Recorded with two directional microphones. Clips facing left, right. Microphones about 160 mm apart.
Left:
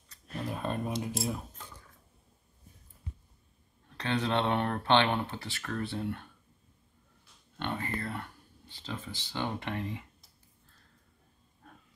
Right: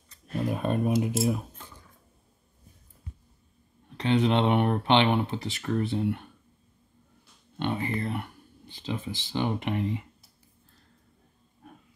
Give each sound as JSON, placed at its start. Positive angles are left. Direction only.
{"t": 0.1, "sound": "a sound", "side_deg": -15}
{"t": 3.9, "sound": "speech", "side_deg": -15}
{"t": 7.5, "sound": "speech", "side_deg": -15}